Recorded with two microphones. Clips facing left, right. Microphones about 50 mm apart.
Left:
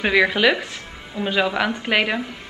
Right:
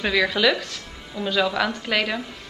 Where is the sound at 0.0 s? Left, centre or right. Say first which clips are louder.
Left 3 dB; left.